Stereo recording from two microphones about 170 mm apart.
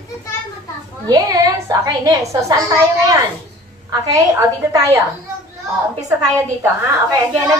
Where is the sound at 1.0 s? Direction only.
20° right (ahead or behind).